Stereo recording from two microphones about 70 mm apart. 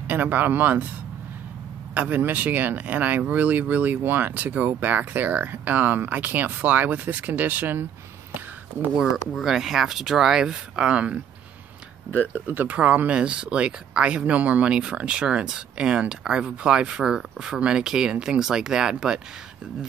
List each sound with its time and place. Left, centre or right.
0.1 s speech: right
2.0 s speech: right
9.1 s speech: centre
12.3 s speech: right